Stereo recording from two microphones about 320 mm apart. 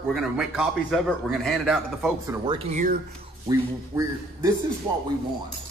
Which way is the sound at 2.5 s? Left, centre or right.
Right.